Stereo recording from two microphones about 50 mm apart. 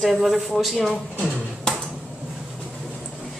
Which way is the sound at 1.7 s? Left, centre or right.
Centre.